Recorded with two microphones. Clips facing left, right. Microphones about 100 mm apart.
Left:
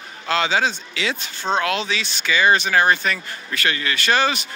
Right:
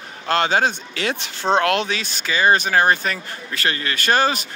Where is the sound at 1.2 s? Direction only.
70° right (ahead or behind).